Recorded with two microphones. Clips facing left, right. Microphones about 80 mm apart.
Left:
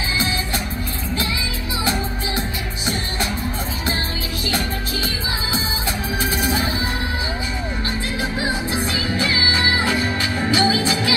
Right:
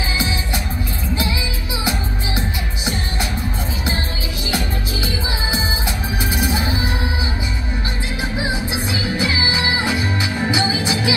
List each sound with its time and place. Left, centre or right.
10.2 s music: centre